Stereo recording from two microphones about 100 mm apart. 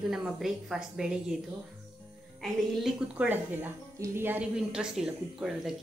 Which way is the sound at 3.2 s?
20° right (ahead or behind).